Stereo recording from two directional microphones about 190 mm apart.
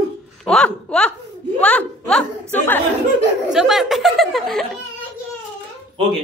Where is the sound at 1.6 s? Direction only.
5° left (ahead or behind).